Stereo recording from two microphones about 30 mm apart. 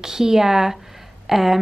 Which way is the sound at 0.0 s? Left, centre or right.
Centre.